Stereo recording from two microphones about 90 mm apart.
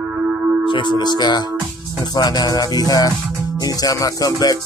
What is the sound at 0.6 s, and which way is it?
Music, 60° left (ahead or behind).